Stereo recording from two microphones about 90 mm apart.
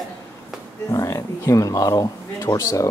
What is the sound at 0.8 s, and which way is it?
Speech, 40° left (ahead or behind).